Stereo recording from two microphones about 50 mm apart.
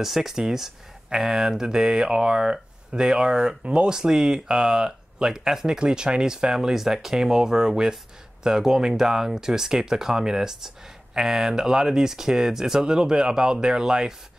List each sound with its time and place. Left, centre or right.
0.0 s speech: centre